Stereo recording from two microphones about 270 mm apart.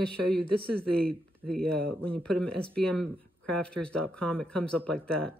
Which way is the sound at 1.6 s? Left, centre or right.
Centre.